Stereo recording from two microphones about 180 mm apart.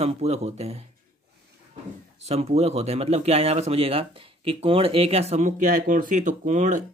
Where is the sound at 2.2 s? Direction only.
35° right (ahead or behind).